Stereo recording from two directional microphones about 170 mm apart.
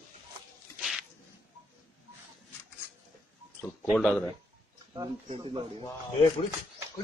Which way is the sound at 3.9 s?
5° left (ahead or behind).